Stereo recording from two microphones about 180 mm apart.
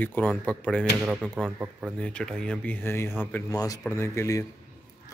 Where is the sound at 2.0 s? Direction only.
5° left (ahead or behind).